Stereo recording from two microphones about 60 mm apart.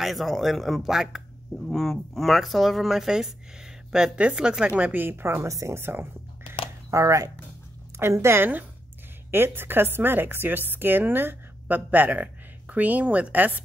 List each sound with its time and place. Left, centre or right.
0.0 s speech: centre; by 5.0 s right
5.0 s a woman's voice: right
5.5 s speech: right
5.8 s a woman's voice: right
6.9 s speech: right
8.0 s a woman's voice: right